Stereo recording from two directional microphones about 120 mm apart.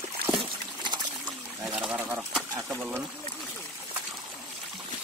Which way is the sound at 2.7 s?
15° right (ahead or behind).